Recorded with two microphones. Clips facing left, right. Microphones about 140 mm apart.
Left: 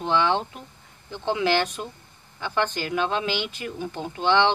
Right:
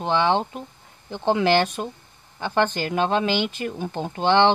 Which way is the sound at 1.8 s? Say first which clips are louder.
Right 5 dB; 45° right (ahead or behind).